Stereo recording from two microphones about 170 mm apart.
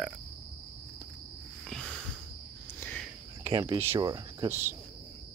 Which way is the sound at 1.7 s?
Centre (ahead or behind).